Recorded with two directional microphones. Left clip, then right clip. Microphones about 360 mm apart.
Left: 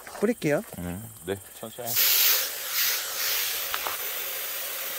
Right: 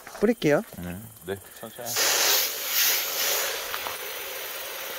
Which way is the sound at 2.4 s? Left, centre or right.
Right.